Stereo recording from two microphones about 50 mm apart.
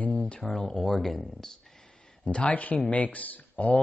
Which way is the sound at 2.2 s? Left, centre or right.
Left.